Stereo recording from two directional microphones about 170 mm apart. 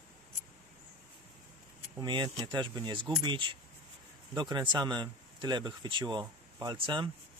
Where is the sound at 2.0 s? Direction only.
25° right (ahead or behind).